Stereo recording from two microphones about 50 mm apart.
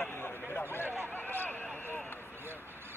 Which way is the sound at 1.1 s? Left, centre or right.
Left.